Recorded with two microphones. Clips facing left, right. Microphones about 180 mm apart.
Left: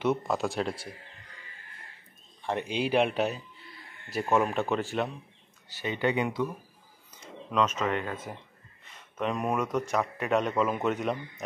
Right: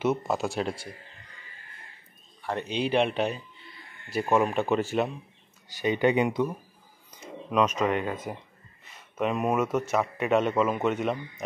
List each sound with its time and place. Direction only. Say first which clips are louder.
0.0 s a man's voice: right 1 dB; 5° right (ahead or behind)
2.4 s a man's voice: right 1 dB; 15° left (ahead or behind); by 5.1 s 5° right (ahead or behind)
5.7 s a man's voice: right 5 dB; 15° right (ahead or behind)